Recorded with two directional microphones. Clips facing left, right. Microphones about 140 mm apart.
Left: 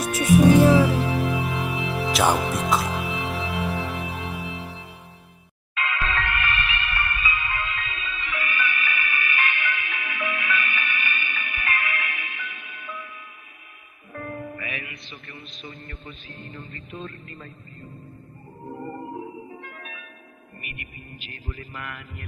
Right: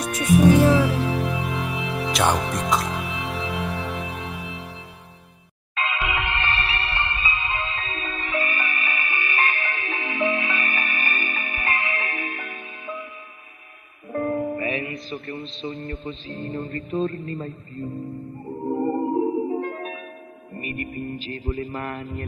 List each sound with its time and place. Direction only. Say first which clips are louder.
0.0 s music: even; 5° left (ahead or behind)
5.8 s music: right 1 dB; 20° right (ahead or behind)
14.1 s music: right 10 dB; 30° right (ahead or behind)
16.6 s music: right 12 dB; 45° right (ahead or behind)
17.0 s music: right 12 dB; 35° right (ahead or behind)
18.9 s music: right 13 dB; 30° right (ahead or behind)
19.3 s music: right 15 dB; 40° right (ahead or behind)